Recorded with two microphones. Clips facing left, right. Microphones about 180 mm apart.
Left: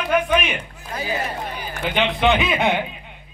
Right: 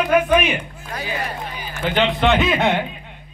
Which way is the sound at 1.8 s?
Centre (ahead or behind).